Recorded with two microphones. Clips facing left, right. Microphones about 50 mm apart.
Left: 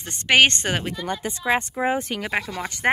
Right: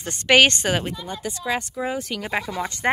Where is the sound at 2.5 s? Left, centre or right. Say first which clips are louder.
Right 3 dB; centre.